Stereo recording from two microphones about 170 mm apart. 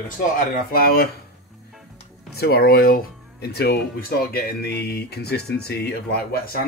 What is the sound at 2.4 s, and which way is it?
Speech, 65° left (ahead or behind).